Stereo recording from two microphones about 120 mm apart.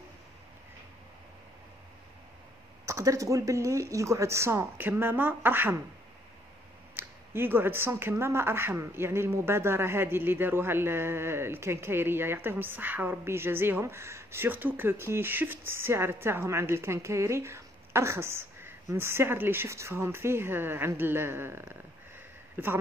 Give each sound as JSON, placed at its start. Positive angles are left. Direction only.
{"t": 2.9, "sound": "speech", "side_deg": -25}
{"t": 7.0, "sound": "speech", "side_deg": -20}